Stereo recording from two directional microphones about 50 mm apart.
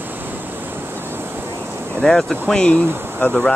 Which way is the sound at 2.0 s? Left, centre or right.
Centre.